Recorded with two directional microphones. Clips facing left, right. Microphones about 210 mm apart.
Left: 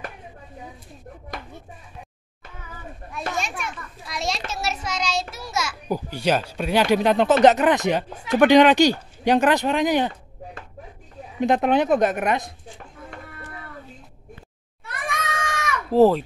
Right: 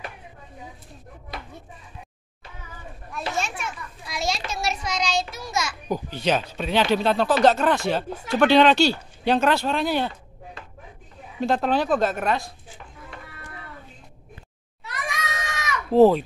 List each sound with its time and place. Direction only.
3.7 s children playing: centre (ahead or behind)
5.3 s a child's voice: 5° left (ahead or behind)
11.3 s a child's voice: 15° left (ahead or behind)
13.1 s a sound: 50° left (ahead or behind)
14.9 s goat: 50° left (ahead or behind)
15.9 s a child's voice: centre (ahead or behind)